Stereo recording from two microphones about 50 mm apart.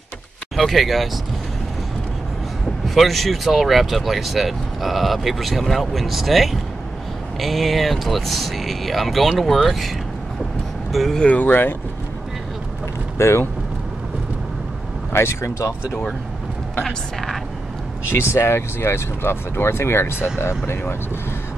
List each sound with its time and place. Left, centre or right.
0.6 s speech: centre
2.9 s speech: centre
11.2 s speech: left
13.2 s speech: left
15.1 s speech: left
18.1 s speech: left